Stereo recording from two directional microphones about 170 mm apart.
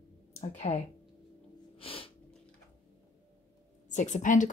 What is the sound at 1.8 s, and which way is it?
Sneeze, 35° left (ahead or behind).